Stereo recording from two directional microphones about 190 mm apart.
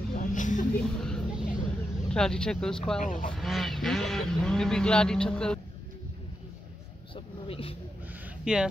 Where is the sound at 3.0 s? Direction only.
40° left (ahead or behind).